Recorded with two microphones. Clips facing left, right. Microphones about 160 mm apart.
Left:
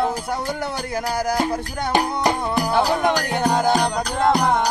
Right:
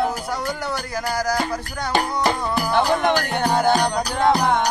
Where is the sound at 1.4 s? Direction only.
15° left (ahead or behind).